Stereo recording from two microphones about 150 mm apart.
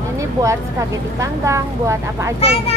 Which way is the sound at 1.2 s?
20° right (ahead or behind).